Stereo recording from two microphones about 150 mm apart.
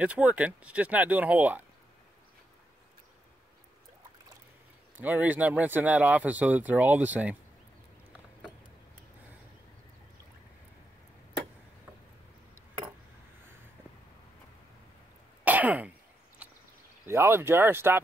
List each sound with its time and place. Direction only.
0.0 s speech: 10° right (ahead or behind)
4.9 s speech: 10° right (ahead or behind)
15.4 s throat clearing: 10° right (ahead or behind)
16.4 s a sound: 10° right (ahead or behind)
17.0 s speech: 15° right (ahead or behind)